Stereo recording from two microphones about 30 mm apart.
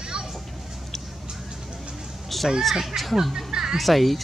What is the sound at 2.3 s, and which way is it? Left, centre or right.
Children playing, centre.